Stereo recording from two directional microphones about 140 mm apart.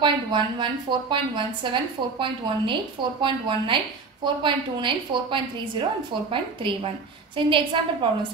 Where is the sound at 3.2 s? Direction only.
35° right (ahead or behind).